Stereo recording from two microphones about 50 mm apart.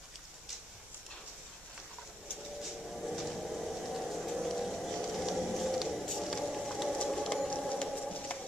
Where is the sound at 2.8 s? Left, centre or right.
Centre.